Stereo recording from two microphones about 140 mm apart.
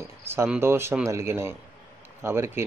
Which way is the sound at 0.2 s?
15° right (ahead or behind).